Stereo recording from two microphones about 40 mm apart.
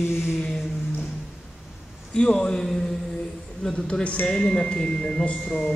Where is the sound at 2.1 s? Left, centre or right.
Centre.